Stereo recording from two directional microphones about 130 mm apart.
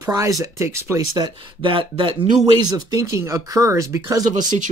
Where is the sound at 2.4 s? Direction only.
30° right (ahead or behind).